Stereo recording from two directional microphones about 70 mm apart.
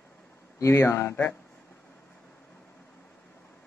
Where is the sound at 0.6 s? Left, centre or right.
Left.